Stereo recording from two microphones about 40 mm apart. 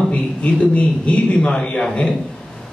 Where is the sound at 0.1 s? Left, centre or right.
Left.